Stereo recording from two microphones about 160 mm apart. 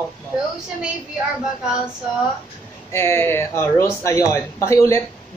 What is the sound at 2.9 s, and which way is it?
Speech, 15° left (ahead or behind).